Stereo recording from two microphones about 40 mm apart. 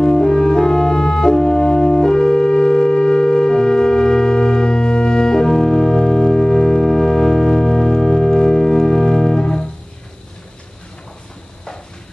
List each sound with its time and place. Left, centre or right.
0.0 s music: centre